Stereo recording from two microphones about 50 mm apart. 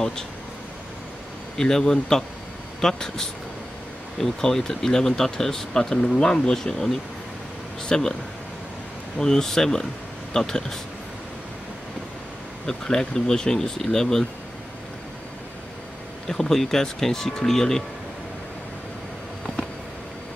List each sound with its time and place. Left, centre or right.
1.6 s speech: centre
9.2 s speech: centre
12.6 s speech: centre
16.3 s speech: centre